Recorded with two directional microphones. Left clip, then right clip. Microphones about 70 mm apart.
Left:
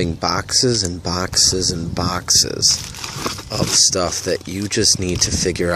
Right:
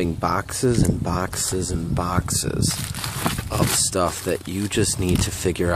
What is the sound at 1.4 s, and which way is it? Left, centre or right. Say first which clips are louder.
Speech: left 9 dB; right.